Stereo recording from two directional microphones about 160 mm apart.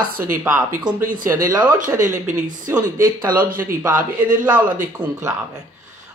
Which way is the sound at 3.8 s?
10° right (ahead or behind).